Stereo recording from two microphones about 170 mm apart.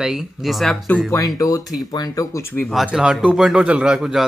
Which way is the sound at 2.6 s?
Centre (ahead or behind).